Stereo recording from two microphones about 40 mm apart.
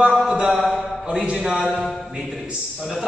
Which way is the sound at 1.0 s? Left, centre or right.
Right.